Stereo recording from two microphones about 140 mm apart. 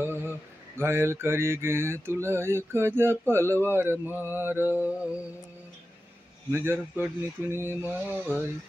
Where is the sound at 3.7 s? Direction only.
15° right (ahead or behind).